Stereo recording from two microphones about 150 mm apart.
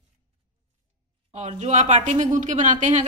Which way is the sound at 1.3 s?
50° right (ahead or behind).